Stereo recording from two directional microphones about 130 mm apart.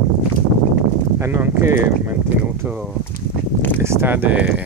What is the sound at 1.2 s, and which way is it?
Speech, 20° right (ahead or behind).